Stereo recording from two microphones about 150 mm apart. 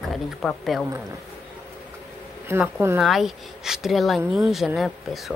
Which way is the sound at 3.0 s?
Centre (ahead or behind).